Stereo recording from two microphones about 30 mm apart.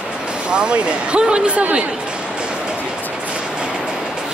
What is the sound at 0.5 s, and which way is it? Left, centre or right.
Speech, right.